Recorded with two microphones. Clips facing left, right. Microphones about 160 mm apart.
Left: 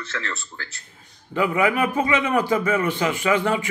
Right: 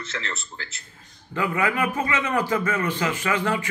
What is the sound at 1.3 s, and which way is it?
A man's voice, 15° left (ahead or behind).